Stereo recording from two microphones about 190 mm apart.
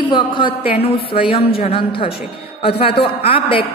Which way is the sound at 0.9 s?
55° left (ahead or behind).